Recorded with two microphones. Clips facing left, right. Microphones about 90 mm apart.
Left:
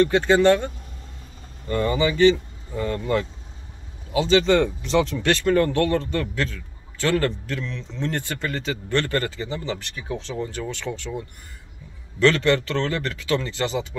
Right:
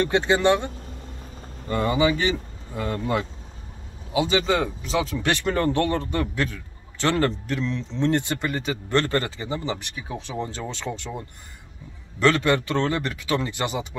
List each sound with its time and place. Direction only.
0.0 s speech: 20° right (ahead or behind)
1.7 s speech: 15° right (ahead or behind)
4.5 s speech: 5° right (ahead or behind); by 10.8 s 20° right (ahead or behind)
12.2 s speech: 15° right (ahead or behind)